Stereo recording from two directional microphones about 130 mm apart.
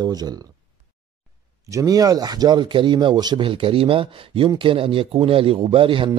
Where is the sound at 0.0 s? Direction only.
30° right (ahead or behind).